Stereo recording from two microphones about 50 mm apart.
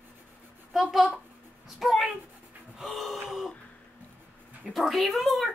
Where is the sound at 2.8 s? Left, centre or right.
Centre.